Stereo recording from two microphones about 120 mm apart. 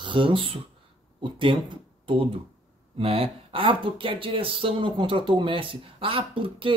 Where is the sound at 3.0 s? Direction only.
50° right (ahead or behind).